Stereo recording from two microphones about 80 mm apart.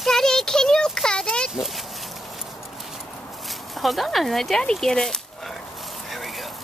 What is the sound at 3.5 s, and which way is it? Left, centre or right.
Speech, centre.